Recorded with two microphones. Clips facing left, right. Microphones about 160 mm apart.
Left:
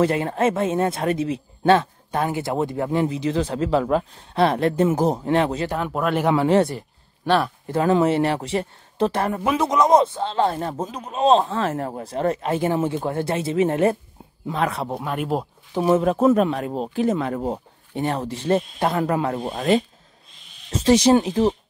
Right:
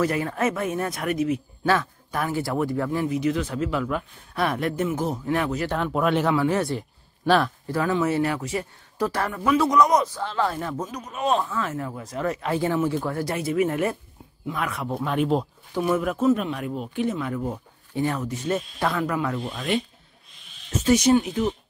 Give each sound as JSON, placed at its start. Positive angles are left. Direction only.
{"t": 0.0, "sound": "speech", "side_deg": 30}
{"t": 5.7, "sound": "speech", "side_deg": 10}
{"t": 6.2, "sound": "speech", "side_deg": 25}
{"t": 7.2, "sound": "speech", "side_deg": 5}
{"t": 8.0, "sound": "speech", "side_deg": 25}
{"t": 11.7, "sound": "speech", "side_deg": 45}
{"t": 12.0, "sound": "speech", "side_deg": 30}
{"t": 15.0, "sound": "speech", "side_deg": 5}
{"t": 15.7, "sound": "speech", "side_deg": 25}
{"t": 16.3, "sound": "speech", "side_deg": 45}